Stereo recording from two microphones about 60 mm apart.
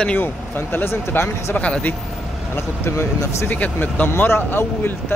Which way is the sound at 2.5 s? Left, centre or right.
Left.